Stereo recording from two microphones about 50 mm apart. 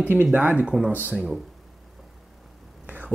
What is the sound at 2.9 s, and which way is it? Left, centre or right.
Whispering, right.